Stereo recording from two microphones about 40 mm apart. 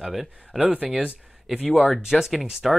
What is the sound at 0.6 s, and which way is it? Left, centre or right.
Speech, right.